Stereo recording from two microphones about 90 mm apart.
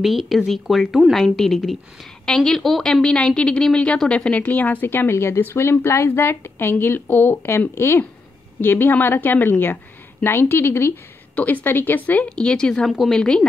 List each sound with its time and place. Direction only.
0.0 s a woman's voice: centre (ahead or behind)